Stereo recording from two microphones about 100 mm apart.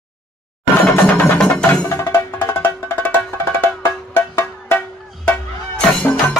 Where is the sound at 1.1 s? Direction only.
20° left (ahead or behind).